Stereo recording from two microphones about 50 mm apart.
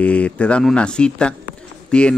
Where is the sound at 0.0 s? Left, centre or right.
Left.